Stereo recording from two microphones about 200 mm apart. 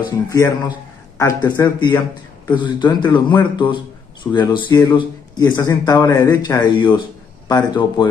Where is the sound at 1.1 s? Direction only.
15° left (ahead or behind).